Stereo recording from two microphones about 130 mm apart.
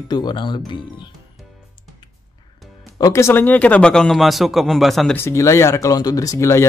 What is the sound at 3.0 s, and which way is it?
Speech, 20° left (ahead or behind).